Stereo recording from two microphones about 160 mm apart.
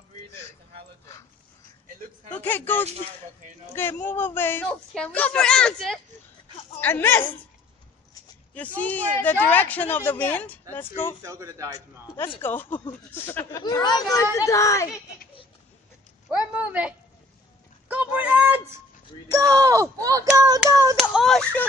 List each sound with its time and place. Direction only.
2.3 s speech: 10° left (ahead or behind)
8.5 s speech: 10° left (ahead or behind)
11.2 s speech: 20° right (ahead or behind)
12.4 s speech: 10° left (ahead or behind)
16.3 s speech: 10° right (ahead or behind)
19.3 s speech: 20° right (ahead or behind)
20.9 s hands: centre (ahead or behind)